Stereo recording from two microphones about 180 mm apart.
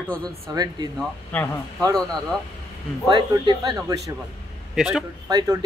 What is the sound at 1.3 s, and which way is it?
Speech, 10° left (ahead or behind).